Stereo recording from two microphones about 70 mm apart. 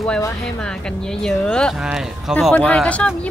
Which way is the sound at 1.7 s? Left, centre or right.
Centre.